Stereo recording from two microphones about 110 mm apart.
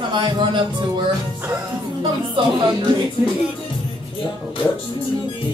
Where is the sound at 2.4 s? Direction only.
50° right (ahead or behind).